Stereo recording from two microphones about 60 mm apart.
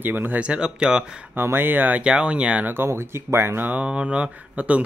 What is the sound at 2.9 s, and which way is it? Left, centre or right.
Speech, right.